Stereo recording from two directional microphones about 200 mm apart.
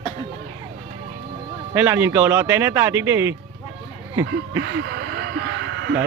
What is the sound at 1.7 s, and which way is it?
Speech, 10° right (ahead or behind).